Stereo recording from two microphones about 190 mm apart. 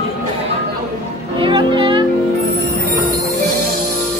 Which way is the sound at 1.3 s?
25° right (ahead or behind).